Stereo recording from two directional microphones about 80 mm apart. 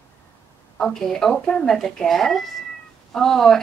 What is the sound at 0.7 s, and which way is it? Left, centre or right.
Speech, centre.